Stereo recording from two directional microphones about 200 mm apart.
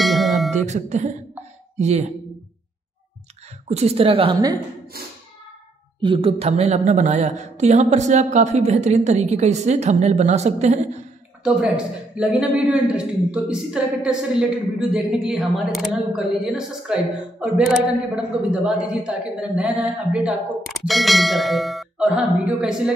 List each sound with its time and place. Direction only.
0.0 s music: centre (ahead or behind)
0.5 s a woman's voice: 35° right (ahead or behind)
3.6 s a woman's voice: 30° right (ahead or behind)
5.9 s a woman's voice: 25° right (ahead or behind)
11.4 s a man's voice: 5° right (ahead or behind)